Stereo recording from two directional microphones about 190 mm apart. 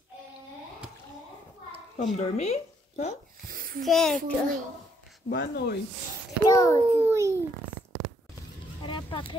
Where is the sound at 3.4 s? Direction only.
50° right (ahead or behind).